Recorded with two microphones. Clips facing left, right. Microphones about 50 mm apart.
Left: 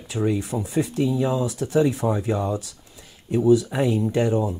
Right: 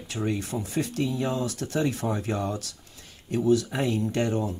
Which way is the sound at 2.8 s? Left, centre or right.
Centre.